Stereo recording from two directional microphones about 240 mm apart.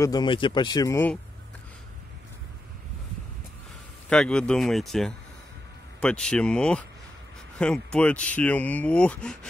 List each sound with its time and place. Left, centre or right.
0.0 s speech: centre
4.1 s speech: centre